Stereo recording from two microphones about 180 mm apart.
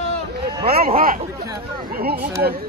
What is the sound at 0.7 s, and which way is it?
Speech, 55° right (ahead or behind).